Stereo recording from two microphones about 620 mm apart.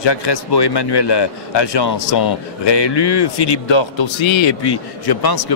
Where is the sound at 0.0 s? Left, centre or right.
Left.